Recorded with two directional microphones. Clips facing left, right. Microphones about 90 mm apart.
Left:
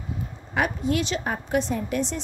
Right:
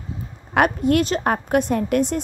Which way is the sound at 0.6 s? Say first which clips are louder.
Right 7 dB; 55° right (ahead or behind).